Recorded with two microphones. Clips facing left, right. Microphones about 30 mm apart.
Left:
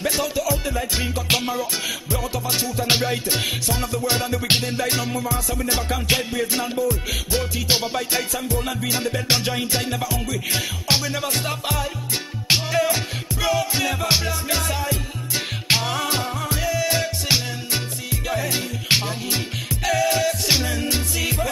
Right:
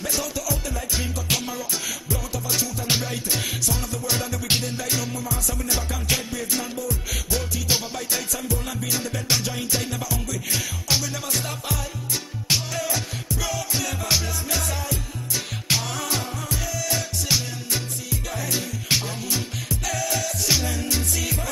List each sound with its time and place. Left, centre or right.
0.0 s music: left